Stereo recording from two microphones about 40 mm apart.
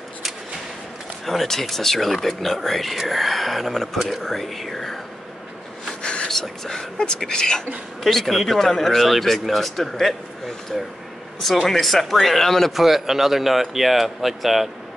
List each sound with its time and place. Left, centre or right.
1.2 s speech: centre
6.2 s speech: centre
8.0 s speech: centre
12.7 s speech: centre